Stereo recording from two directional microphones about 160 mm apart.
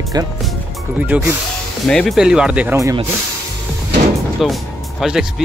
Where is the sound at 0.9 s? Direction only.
10° right (ahead or behind).